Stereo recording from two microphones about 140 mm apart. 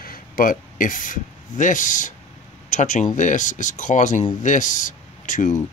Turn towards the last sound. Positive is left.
turn(degrees=65)  # may be behind; listen again after turning